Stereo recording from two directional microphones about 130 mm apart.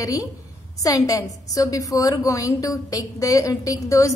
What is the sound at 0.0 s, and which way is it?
A woman's voice, 25° left (ahead or behind).